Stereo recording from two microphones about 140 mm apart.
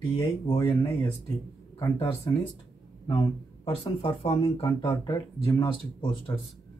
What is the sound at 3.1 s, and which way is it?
Speech, 35° left (ahead or behind).